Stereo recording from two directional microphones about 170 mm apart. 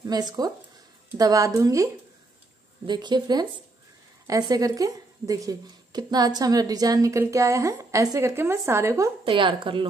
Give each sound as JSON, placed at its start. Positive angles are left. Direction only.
{"t": 0.0, "sound": "a woman's voice", "side_deg": -25}
{"t": 2.9, "sound": "a woman's voice", "side_deg": -25}
{"t": 9.2, "sound": "a woman's voice", "side_deg": -30}